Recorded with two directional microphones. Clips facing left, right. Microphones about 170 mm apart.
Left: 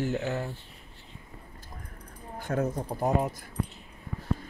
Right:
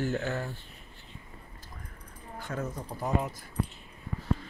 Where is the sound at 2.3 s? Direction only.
50° left (ahead or behind).